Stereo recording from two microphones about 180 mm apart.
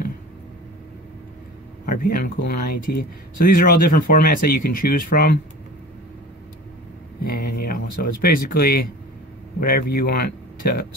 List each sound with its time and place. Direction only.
1.9 s speech: 55° left (ahead or behind)
7.2 s speech: 55° left (ahead or behind)